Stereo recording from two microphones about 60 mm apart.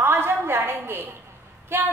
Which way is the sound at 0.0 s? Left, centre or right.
Right.